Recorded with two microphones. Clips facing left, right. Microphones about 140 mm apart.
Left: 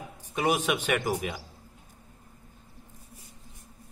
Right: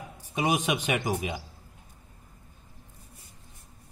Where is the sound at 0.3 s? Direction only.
15° right (ahead or behind).